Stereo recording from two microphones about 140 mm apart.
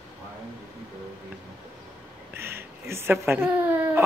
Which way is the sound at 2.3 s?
15° right (ahead or behind).